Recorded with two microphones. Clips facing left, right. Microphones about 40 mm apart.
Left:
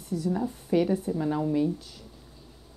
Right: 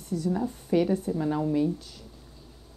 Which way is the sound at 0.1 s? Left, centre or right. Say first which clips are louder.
Even; centre.